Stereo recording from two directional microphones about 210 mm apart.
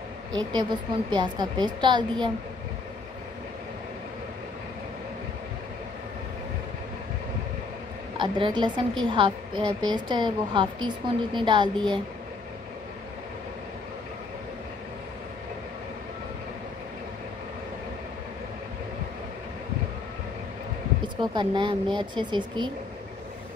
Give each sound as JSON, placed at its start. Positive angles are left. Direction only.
{"t": 0.3, "sound": "a woman's voice", "side_deg": -20}
{"t": 8.2, "sound": "a woman's voice", "side_deg": -20}
{"t": 21.0, "sound": "a woman's voice", "side_deg": -20}